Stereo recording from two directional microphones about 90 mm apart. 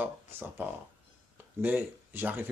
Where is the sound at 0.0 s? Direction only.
25° right (ahead or behind).